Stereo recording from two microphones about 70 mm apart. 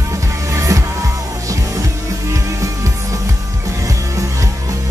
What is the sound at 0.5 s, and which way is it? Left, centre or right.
Music, right.